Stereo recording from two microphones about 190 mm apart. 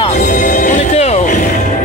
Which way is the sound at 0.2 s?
40° left (ahead or behind).